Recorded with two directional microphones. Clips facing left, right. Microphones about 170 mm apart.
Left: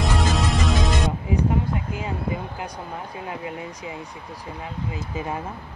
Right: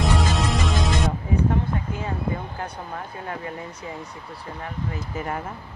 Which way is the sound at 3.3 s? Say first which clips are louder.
Left 1 dB; 15° left (ahead or behind).